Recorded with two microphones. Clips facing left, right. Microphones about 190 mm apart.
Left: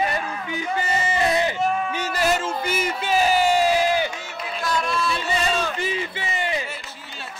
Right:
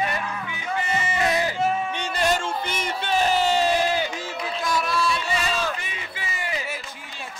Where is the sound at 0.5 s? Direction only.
35° left (ahead or behind).